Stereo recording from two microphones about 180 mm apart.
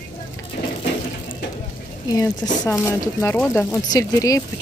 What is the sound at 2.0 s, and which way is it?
Speech, 20° left (ahead or behind).